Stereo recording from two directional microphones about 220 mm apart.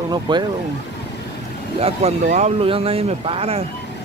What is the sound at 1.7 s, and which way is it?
Speech, 30° right (ahead or behind).